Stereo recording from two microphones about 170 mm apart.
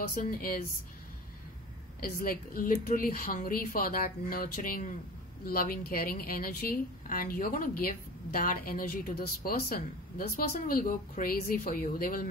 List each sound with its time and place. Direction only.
0.1 s a woman's voice: 60° left (ahead or behind)
2.0 s a woman's voice: 60° left (ahead or behind)